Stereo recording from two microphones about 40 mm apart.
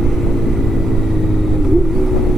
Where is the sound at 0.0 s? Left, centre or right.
Centre.